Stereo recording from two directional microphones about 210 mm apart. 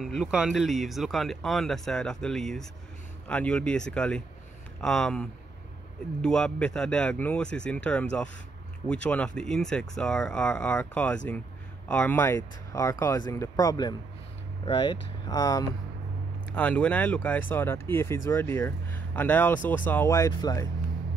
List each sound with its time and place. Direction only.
0.0 s speech: centre (ahead or behind); by 15.6 s 20° left (ahead or behind)
16.5 s speech: 5° left (ahead or behind)